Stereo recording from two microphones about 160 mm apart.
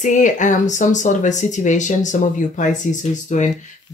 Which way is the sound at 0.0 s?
50° left (ahead or behind).